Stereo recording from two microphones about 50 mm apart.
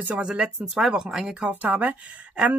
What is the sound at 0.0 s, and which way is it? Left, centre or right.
Speech, right.